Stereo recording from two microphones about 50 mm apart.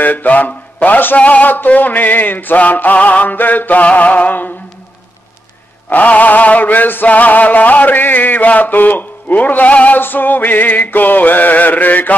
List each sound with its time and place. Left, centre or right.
0.0 s chant: left
5.9 s chant: left